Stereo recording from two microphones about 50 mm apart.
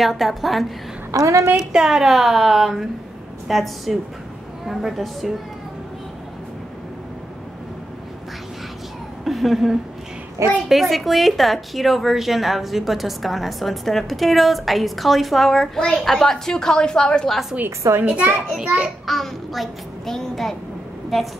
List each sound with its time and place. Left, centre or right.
0.0 s a woman's voice: centre
1.2 s a woman's voice: right
1.7 s a woman's voice: centre
9.2 s a woman's voice: centre
18.0 s a child's voice: right
19.0 s a child's voice: centre